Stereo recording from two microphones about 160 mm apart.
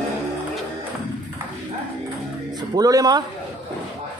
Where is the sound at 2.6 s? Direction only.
20° right (ahead or behind).